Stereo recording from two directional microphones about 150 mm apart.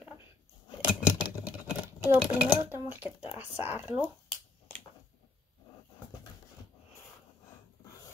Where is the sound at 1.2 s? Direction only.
10° right (ahead or behind).